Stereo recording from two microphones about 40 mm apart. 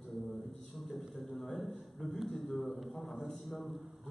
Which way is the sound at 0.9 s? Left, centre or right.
Centre.